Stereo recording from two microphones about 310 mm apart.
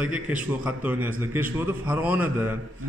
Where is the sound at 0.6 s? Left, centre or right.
Centre.